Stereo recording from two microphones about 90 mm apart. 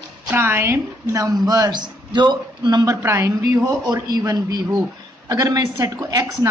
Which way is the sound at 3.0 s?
30° right (ahead or behind).